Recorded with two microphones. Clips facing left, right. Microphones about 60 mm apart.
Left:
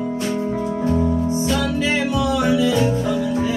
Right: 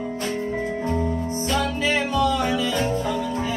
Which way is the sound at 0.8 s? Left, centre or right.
Right.